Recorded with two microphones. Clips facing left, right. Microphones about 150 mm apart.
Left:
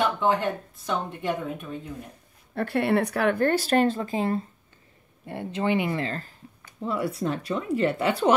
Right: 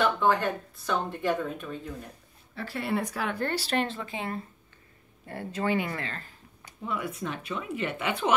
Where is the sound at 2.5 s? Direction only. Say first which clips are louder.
Left 7 dB; 60° left (ahead or behind); by 4.4 s 35° left (ahead or behind).